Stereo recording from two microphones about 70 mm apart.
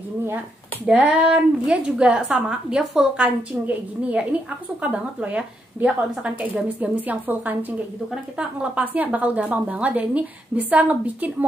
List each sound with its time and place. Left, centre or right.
0.9 s a woman's voice: centre
3.2 s a woman's voice: centre
8.1 s a woman's voice: centre